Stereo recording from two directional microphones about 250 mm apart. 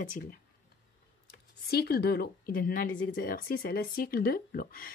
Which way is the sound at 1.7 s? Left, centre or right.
Left.